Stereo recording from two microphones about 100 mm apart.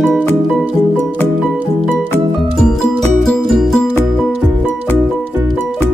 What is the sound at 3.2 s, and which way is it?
Music, 5° left (ahead or behind).